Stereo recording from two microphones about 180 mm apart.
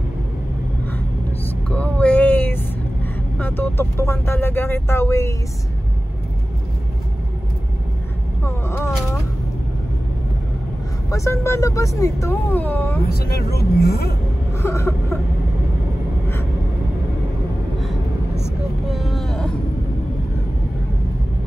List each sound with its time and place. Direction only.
1.7 s music: 5° left (ahead or behind)
3.3 s speech: 10° left (ahead or behind)
8.5 s a sound: 15° left (ahead or behind)
11.1 s speech: 15° left (ahead or behind)
13.0 s speech: 60° left (ahead or behind)
14.6 s speech: 15° left (ahead or behind)
18.9 s vehicle: centre (ahead or behind)